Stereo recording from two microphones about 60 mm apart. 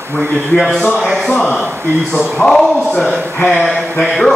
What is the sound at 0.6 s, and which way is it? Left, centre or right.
Speech, centre.